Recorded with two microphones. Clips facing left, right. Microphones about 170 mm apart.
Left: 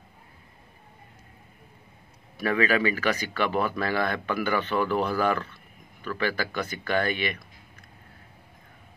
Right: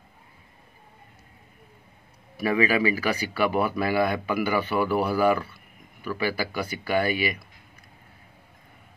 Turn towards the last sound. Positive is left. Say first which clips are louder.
# right 2 dB
turn(degrees=-10)  # may be behind; listen again after turning